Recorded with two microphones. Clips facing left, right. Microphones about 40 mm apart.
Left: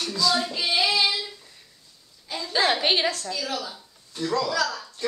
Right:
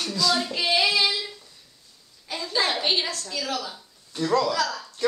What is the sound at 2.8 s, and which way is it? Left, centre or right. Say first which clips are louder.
Speech: left 3 dB; centre.